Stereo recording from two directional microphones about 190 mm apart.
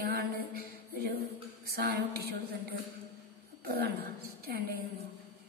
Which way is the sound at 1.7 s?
55° right (ahead or behind).